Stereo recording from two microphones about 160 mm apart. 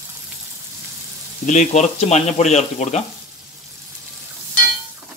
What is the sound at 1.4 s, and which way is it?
Speech, 50° left (ahead or behind).